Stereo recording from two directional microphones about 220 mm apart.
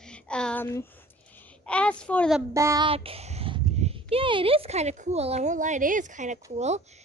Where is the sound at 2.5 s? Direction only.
15° right (ahead or behind).